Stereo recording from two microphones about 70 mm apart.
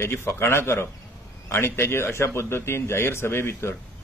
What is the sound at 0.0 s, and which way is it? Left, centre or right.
A man's voice, left.